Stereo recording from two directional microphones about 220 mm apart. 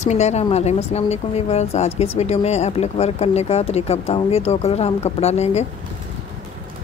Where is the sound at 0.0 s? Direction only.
30° left (ahead or behind).